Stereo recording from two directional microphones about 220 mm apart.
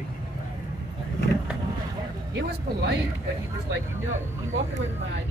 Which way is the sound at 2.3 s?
50° right (ahead or behind).